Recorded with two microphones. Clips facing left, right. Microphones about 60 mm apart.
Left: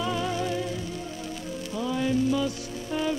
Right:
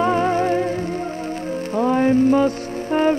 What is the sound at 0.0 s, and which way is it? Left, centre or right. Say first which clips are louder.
Music: right 10 dB; right.